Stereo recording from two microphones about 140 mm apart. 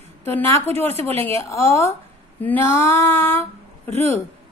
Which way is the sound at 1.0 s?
15° left (ahead or behind).